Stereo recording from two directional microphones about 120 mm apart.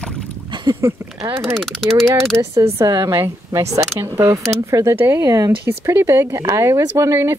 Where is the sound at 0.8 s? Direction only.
25° right (ahead or behind).